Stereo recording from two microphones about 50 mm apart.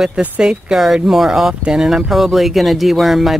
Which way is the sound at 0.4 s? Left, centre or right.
Centre.